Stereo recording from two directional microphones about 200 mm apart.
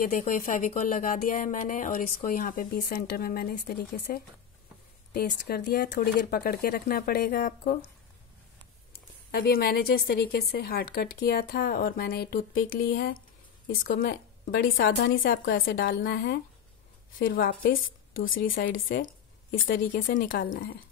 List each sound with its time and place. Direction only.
0.0 s speech: 45° left (ahead or behind)
9.3 s a woman's voice: 50° left (ahead or behind)
19.7 s speech: 45° left (ahead or behind)